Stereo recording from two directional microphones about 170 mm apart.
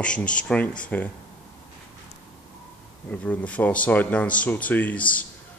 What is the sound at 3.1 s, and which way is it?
Speech, 10° left (ahead or behind).